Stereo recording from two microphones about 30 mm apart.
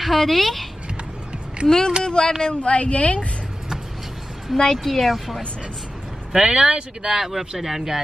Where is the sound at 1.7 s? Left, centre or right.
Left.